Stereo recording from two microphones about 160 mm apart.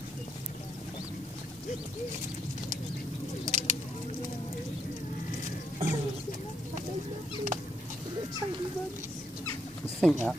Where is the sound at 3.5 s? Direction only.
50° right (ahead or behind).